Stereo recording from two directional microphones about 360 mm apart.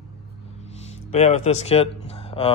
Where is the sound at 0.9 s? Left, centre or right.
Centre.